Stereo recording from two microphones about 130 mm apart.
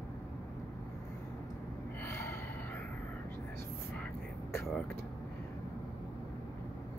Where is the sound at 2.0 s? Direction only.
20° left (ahead or behind).